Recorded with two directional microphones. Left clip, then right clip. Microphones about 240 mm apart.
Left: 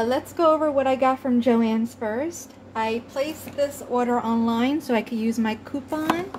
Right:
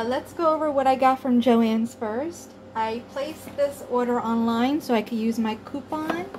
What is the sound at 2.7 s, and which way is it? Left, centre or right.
A woman's voice, left.